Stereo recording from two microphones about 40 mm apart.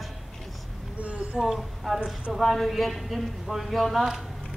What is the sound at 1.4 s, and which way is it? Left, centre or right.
A man's voice, centre.